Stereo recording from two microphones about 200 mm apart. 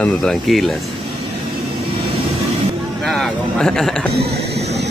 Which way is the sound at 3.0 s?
Centre (ahead or behind).